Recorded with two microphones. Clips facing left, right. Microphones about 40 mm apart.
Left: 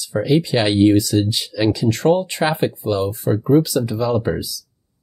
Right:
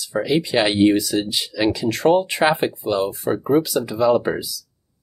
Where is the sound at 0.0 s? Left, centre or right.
Centre.